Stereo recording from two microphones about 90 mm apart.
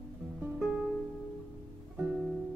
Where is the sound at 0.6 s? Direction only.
10° right (ahead or behind).